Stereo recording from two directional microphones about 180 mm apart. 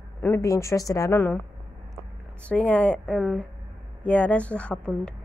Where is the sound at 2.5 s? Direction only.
5° left (ahead or behind).